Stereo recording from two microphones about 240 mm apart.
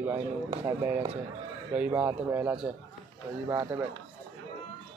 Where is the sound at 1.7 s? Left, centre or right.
Centre.